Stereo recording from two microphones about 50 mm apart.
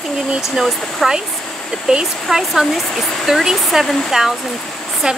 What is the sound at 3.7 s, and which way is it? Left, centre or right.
Speech, centre.